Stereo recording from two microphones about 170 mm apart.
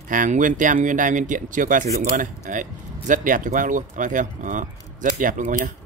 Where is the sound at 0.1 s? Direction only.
50° right (ahead or behind).